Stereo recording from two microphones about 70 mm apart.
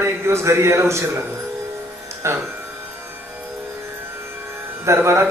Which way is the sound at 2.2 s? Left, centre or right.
Right.